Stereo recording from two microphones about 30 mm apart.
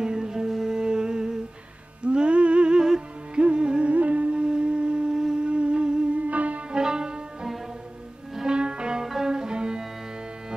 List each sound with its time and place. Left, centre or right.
0.0 s music: centre
0.6 s humming: right
2.0 s music: right
3.8 s music: right
4.6 s a sound: right
5.1 s a sound: right
5.5 s music: right
6.2 s music: right
6.7 s music: right
8.5 s music: right
9.0 s music: centre
9.3 s music: right